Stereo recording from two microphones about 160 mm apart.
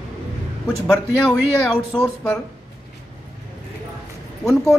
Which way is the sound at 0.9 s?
5° left (ahead or behind).